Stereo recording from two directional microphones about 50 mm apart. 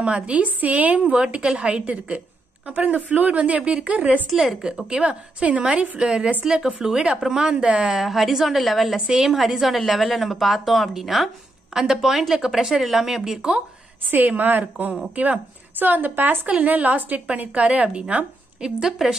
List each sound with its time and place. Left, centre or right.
0.0 s a woman's voice: right
4.3 s a woman's voice: centre
8.9 s a woman's voice: centre
14.1 s speech: right
17.8 s a woman's voice: centre